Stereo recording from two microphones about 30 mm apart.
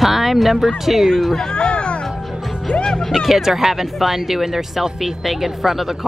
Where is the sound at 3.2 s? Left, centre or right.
Centre.